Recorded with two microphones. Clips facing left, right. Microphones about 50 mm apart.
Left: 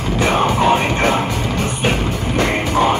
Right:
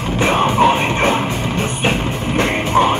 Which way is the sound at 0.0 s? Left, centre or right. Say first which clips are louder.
Right 1 dB; right.